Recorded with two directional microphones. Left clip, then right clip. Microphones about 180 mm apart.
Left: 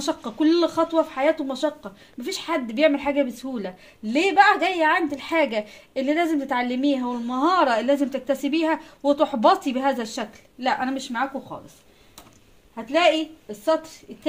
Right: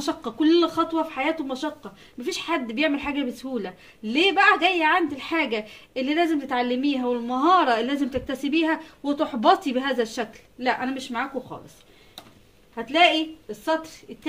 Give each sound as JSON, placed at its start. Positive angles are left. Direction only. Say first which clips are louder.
{"t": 0.0, "sound": "speech", "louder": "left 1 dB", "side_deg": 25}